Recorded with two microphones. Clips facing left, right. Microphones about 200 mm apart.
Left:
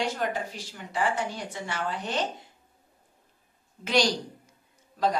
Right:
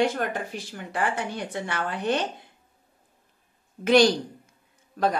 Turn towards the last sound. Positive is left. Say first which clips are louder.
# right 2 dB
turn(degrees=-55)  # may be behind; listen again after turning